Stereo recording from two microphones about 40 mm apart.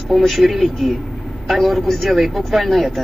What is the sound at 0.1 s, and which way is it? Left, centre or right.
A woman's voice, centre.